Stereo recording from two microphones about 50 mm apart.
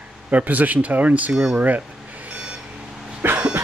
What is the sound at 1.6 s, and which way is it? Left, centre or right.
Speech, right.